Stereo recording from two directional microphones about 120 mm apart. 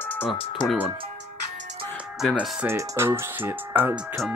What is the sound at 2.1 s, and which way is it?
Speech, centre (ahead or behind).